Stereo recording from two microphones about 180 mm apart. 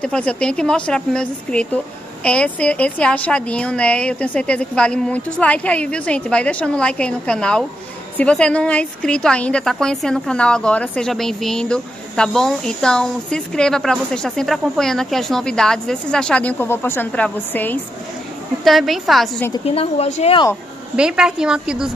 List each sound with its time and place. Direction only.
0.0 s a woman's voice: 5° left (ahead or behind)
19.6 s a woman's voice: 35° left (ahead or behind)
20.9 s a woman's voice: 5° right (ahead or behind)